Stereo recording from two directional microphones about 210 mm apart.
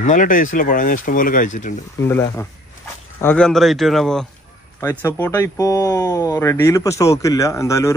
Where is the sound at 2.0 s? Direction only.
10° left (ahead or behind).